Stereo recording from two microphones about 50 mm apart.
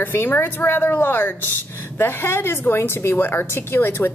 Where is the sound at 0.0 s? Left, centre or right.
Left.